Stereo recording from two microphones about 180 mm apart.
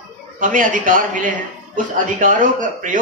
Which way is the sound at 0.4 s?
50° right (ahead or behind).